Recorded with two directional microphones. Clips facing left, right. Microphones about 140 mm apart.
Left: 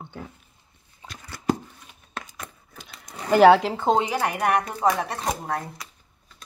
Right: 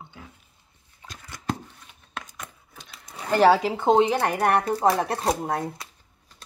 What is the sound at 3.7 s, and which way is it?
Speech, 20° right (ahead or behind).